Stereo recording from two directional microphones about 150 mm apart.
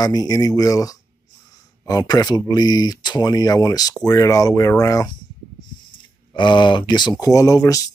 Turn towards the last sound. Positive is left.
turn(degrees=20)  # may be behind; listen again after turning